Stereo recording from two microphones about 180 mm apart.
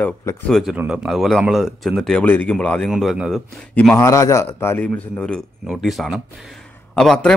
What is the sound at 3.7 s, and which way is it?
A man's voice, 10° left (ahead or behind).